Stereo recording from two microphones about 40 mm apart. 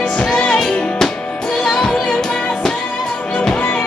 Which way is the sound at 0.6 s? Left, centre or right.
Centre.